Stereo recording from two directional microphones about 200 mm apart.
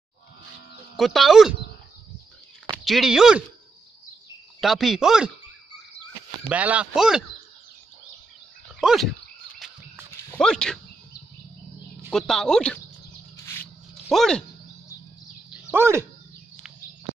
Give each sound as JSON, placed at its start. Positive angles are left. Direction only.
{"t": 0.9, "sound": "speech", "side_deg": 0}
{"t": 2.8, "sound": "speech", "side_deg": 0}
{"t": 4.6, "sound": "speech", "side_deg": 0}
{"t": 6.5, "sound": "speech", "side_deg": -5}
{"t": 8.7, "sound": "dog", "side_deg": 0}
{"t": 9.6, "sound": "a sound", "side_deg": 0}
{"t": 10.3, "sound": "speech", "side_deg": 5}
{"t": 12.1, "sound": "speech", "side_deg": 0}
{"t": 14.0, "sound": "speech", "side_deg": 0}
{"t": 15.7, "sound": "speech", "side_deg": -10}